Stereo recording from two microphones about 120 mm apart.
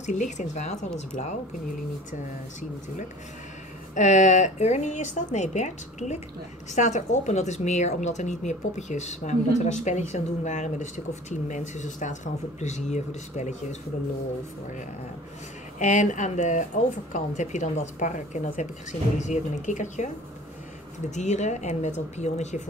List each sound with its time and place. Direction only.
0.0 s a woman's voice: 85° left
3.9 s a woman's voice: 80° left
15.8 s speech: 90° left
21.1 s a woman's voice: 75° left (ahead or behind)